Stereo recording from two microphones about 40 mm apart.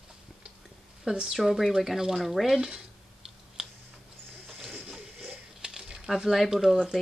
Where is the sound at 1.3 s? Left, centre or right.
Centre.